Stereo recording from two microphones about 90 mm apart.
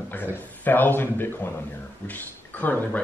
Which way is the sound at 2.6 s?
20° left (ahead or behind).